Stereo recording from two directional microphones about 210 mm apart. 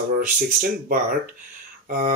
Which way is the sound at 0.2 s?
40° right (ahead or behind).